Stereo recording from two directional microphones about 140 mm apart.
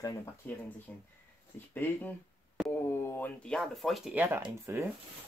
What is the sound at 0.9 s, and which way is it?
Speech, 10° left (ahead or behind).